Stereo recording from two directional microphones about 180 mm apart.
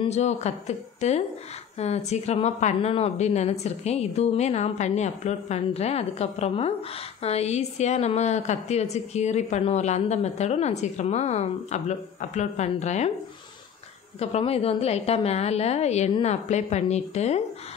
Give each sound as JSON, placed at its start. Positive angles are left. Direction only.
{"t": 0.0, "sound": "a woman's voice", "side_deg": 35}
{"t": 14.2, "sound": "a woman's voice", "side_deg": 35}